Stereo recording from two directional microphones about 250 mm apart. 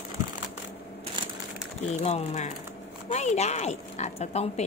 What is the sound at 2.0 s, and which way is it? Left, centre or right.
Speech, left.